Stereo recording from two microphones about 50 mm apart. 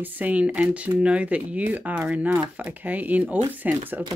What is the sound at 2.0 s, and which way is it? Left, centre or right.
Speech, right.